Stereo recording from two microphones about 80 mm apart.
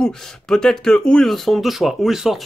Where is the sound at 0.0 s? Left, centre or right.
Centre.